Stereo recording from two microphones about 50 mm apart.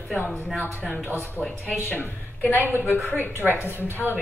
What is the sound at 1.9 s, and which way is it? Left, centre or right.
A woman's voice, left.